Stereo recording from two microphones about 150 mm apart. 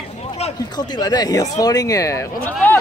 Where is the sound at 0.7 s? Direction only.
30° left (ahead or behind).